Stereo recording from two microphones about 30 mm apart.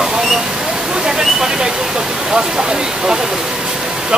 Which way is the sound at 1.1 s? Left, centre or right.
Right.